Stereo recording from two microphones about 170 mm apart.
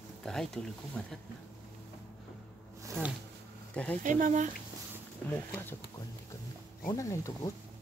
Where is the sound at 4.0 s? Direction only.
50° right (ahead or behind).